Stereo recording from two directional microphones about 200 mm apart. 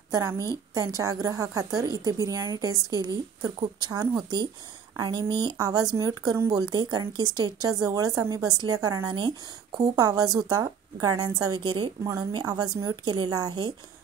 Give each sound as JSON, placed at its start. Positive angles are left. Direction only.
{"t": 0.1, "sound": "a woman's voice", "side_deg": -15}